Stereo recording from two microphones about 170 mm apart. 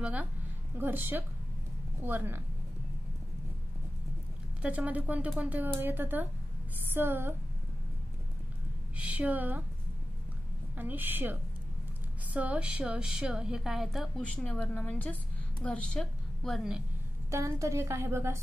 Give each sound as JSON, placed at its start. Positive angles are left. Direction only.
{"t": 0.0, "sound": "a woman's voice", "side_deg": -10}
{"t": 4.6, "sound": "a woman's voice", "side_deg": -10}
{"t": 8.9, "sound": "a woman's voice", "side_deg": -10}
{"t": 10.8, "sound": "a woman's voice", "side_deg": -10}
{"t": 12.4, "sound": "a woman's voice", "side_deg": -5}
{"t": 17.3, "sound": "a woman's voice", "side_deg": -15}